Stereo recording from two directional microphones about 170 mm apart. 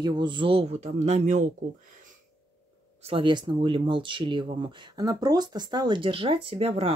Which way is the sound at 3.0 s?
30° right (ahead or behind).